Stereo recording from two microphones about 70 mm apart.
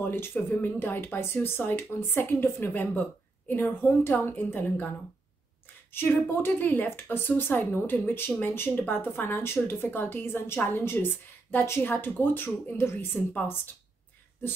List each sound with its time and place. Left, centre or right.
0.0 s speech: left
5.9 s speech: left